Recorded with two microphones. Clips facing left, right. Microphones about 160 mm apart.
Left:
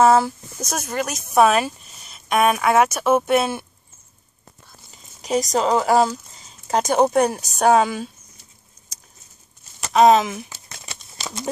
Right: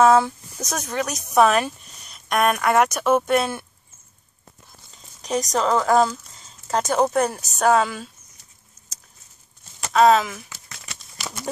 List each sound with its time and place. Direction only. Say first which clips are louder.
0.0 s speech: even; 5° left (ahead or behind)
4.9 s speech: left 3 dB; 10° left (ahead or behind)
9.9 s a sound: left 2 dB; 20° left (ahead or behind)